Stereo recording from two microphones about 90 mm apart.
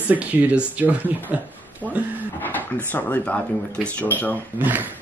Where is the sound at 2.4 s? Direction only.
20° left (ahead or behind).